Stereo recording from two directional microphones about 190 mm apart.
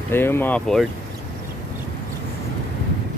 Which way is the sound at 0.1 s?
10° left (ahead or behind).